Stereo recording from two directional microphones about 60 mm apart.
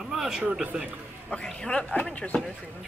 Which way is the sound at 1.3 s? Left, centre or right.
Centre.